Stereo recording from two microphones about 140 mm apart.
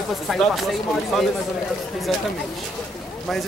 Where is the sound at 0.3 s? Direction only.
Centre (ahead or behind).